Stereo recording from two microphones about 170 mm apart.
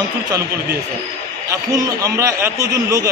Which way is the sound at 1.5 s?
20° right (ahead or behind).